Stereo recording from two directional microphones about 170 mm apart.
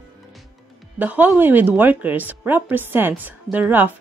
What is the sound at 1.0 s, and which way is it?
A woman's voice, 10° right (ahead or behind).